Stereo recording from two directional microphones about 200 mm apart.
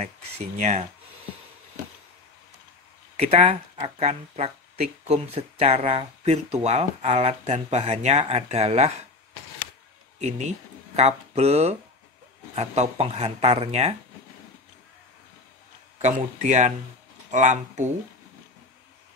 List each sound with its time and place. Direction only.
0.6 s speech: 35° right (ahead or behind)
3.2 s speech: 30° right (ahead or behind)
10.1 s speech: 35° right (ahead or behind)
16.0 s speech: 35° right (ahead or behind)